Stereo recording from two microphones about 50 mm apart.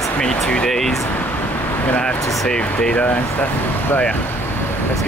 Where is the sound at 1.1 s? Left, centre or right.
Left.